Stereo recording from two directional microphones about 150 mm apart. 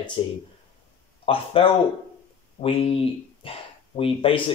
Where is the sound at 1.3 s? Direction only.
35° left (ahead or behind).